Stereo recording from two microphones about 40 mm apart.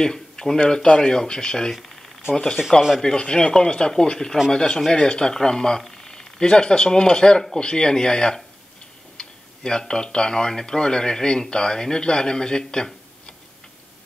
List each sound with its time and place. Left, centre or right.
0.0 s speech: centre